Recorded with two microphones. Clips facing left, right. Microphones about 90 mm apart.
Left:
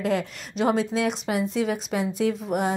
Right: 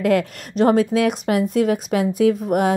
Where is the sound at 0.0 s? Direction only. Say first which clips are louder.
Right 7 dB; 50° right (ahead or behind).